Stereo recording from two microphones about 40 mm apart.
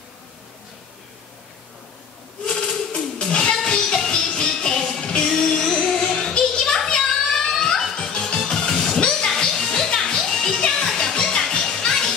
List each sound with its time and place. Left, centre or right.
2.4 s a sound: left
3.6 s music: centre
7.2 s a sound: centre
7.8 s music: centre
8.1 s music: left
8.4 s music: centre